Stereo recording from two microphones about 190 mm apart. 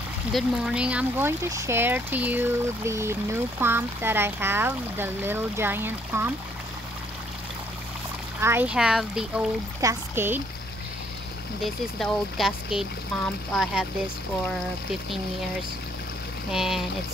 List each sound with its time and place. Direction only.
0.3 s speech: centre (ahead or behind)
8.4 s speech: 10° right (ahead or behind)
9.8 s speech: 15° right (ahead or behind)
11.6 s speech: centre (ahead or behind)
16.5 s speech: centre (ahead or behind)